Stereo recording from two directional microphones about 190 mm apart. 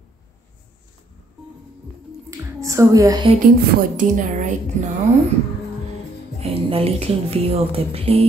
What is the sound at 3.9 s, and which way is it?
Speech, 45° right (ahead or behind).